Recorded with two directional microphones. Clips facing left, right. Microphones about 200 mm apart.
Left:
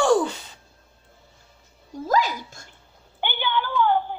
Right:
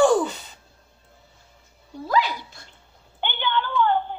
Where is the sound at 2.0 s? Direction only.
45° left (ahead or behind).